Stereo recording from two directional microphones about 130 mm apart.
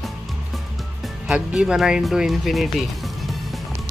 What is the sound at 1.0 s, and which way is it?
Music, 5° right (ahead or behind).